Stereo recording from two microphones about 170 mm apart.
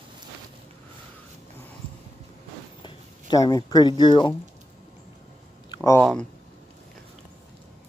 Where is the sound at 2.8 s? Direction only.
25° left (ahead or behind).